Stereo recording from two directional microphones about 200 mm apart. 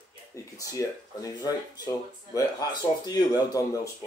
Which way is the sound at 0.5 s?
20° left (ahead or behind).